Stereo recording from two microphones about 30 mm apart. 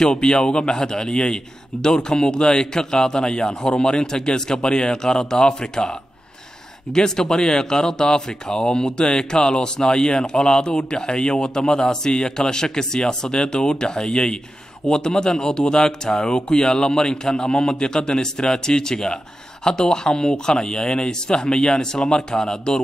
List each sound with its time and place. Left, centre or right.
0.1 s speech: left